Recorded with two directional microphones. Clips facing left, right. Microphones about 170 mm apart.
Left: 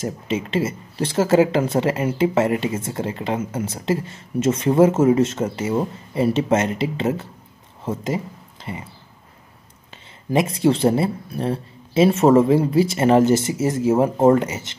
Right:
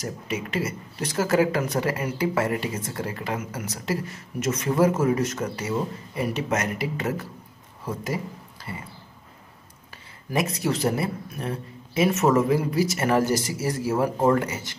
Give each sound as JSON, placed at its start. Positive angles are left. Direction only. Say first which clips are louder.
{"t": 0.0, "sound": "speech", "louder": "left 6 dB", "side_deg": 25}
{"t": 8.6, "sound": "a sound", "louder": "left 5 dB", "side_deg": 25}
{"t": 10.3, "sound": "speech", "louder": "left 7 dB", "side_deg": 25}